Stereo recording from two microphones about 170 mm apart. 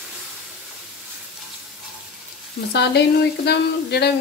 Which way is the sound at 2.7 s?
80° left.